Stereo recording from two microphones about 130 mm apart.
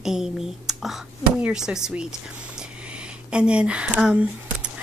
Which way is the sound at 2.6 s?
10° right (ahead or behind).